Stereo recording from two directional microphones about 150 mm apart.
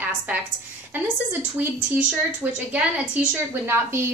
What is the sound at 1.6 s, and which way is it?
A woman's voice, 10° right (ahead or behind).